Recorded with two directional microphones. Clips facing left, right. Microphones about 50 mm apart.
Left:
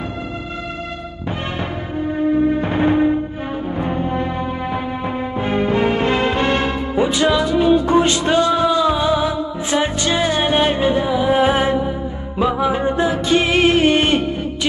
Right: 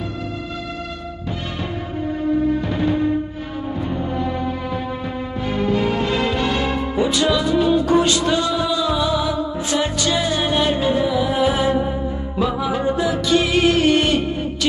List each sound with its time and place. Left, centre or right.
2.6 s music: left